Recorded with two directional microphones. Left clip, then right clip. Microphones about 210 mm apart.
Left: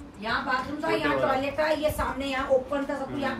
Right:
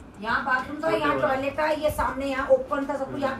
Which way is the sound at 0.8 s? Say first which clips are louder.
Right 2 dB; centre (ahead or behind).